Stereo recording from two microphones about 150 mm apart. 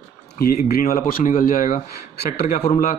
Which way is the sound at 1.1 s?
65° left (ahead or behind).